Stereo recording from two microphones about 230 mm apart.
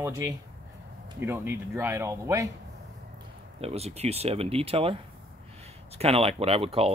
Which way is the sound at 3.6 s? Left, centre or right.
Right.